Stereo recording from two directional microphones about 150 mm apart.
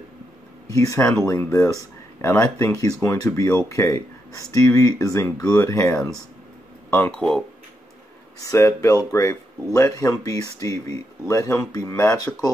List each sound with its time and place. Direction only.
0.7 s speech: 20° left (ahead or behind)
7.1 s speech: 5° left (ahead or behind)
8.5 s speech: 20° left (ahead or behind)